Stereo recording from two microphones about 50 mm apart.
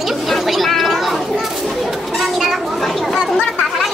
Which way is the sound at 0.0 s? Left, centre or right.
Centre.